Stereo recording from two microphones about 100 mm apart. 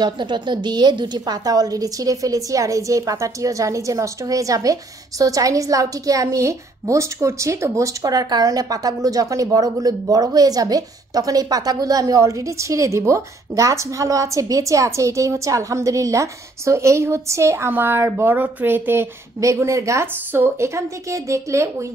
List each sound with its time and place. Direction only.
0.0 s a woman's voice: 50° right (ahead or behind); by 19.0 s 20° right (ahead or behind)
19.4 s a woman's voice: 30° right (ahead or behind)